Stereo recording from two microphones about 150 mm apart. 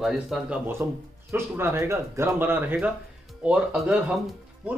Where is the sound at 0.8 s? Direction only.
15° right (ahead or behind).